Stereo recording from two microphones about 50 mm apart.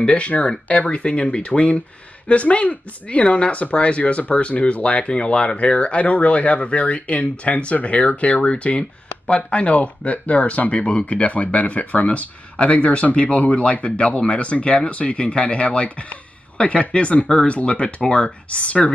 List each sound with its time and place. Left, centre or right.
0.0 s speech: left